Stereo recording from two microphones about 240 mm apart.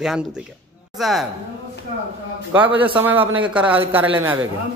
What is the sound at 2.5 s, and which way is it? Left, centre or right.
A man's voice, centre.